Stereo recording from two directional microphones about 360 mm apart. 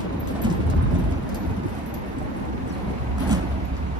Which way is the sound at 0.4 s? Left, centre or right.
Centre.